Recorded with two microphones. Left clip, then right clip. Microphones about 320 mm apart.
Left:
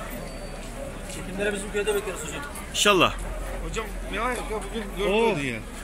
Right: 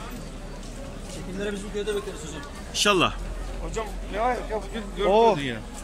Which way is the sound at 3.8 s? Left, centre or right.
Right.